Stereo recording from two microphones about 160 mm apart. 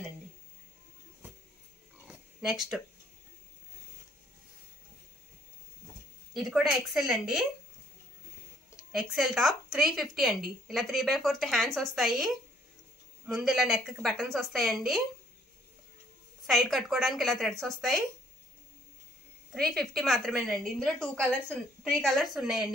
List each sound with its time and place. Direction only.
2.0 s oink: centre (ahead or behind)
6.3 s a woman's voice: centre (ahead or behind)
8.9 s a woman's voice: 5° right (ahead or behind)
16.4 s a woman's voice: centre (ahead or behind)
19.5 s a woman's voice: centre (ahead or behind)